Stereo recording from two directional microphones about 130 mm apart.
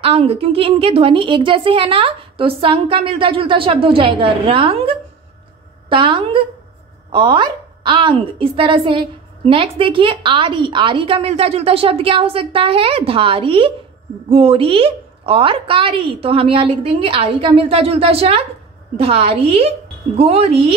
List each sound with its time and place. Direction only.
0.0 s a woman's voice: 50° right (ahead or behind)